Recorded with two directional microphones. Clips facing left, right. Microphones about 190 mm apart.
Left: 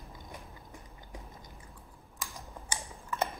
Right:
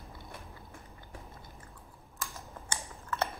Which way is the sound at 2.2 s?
15° left (ahead or behind).